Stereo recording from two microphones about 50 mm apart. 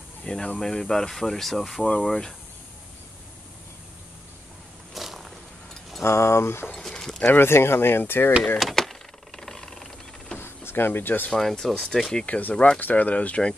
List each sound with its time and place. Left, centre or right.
0.2 s speech: centre
2.0 s speech: centre
4.9 s walk: centre
6.0 s speech: left
6.7 s a sound: centre
7.2 s speech: left
8.5 s speech: centre
9.4 s mechanisms: centre
10.4 s a sound: left
11.3 s speech: centre
12.3 s speech: left
12.5 s speech: left
12.8 s speech: left